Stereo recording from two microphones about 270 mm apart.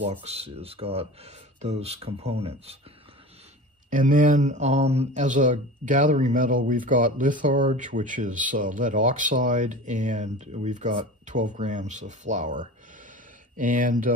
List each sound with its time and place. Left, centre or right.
0.0 s speech: right
3.9 s speech: right